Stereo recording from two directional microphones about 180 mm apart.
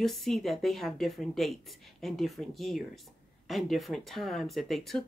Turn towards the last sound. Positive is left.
turn(degrees=0)  # may be behind; listen again after turning